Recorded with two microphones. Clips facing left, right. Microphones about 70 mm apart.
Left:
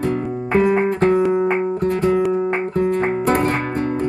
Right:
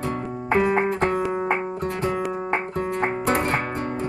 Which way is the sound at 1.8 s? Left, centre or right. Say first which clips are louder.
Left 7 dB; left.